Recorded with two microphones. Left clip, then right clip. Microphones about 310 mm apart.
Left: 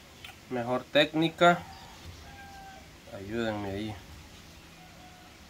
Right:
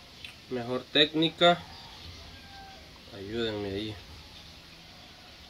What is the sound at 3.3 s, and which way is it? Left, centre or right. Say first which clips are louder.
Speech: right 1 dB; centre.